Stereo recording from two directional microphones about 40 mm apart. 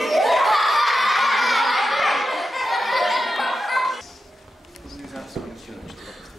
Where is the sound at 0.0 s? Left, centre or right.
Centre.